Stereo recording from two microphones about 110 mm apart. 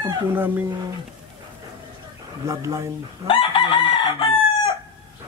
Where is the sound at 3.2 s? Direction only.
55° left (ahead or behind).